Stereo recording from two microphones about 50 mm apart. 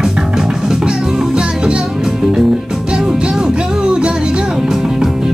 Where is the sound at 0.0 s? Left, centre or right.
Centre.